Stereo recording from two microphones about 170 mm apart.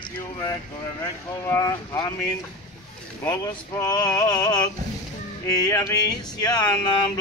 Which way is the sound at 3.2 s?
20° left (ahead or behind).